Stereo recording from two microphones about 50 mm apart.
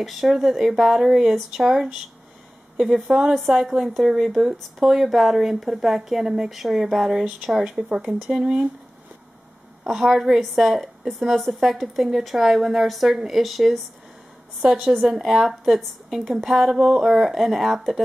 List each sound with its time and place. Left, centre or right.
0.0 s a woman's voice: centre
9.8 s a woman's voice: centre
14.6 s a woman's voice: centre